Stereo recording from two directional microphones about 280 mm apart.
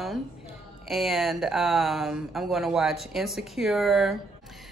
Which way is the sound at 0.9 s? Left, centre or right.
Centre.